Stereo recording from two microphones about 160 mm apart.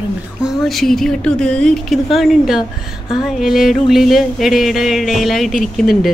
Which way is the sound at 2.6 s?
30° left (ahead or behind).